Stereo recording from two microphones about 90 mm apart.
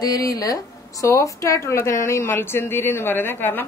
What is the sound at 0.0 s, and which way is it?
A woman's voice, 40° left (ahead or behind).